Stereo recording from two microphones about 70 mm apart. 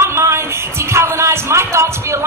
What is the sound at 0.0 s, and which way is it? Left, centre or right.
Music, right.